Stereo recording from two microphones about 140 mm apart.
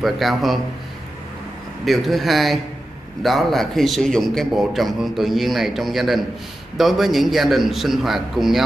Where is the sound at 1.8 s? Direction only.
Centre (ahead or behind).